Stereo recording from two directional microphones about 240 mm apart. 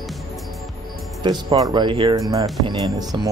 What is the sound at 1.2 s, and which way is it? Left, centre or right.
Speech, centre.